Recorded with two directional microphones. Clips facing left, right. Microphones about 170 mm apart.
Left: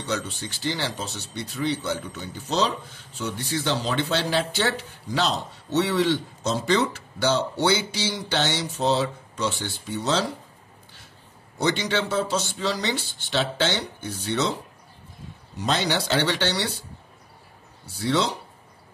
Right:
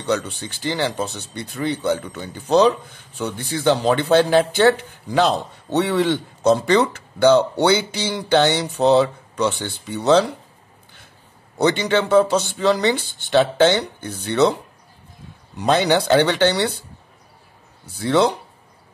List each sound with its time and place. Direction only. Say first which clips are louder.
0.0 s speech: right 6 dB; 60° right (ahead or behind)
11.5 s speech: right 6 dB; 60° right (ahead or behind)
15.5 s speech: right 8 dB; 60° right (ahead or behind)
18.0 s speech: right 7 dB; 55° right (ahead or behind)